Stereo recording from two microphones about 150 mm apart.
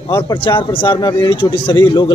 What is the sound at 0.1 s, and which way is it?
A man's voice, 35° left (ahead or behind).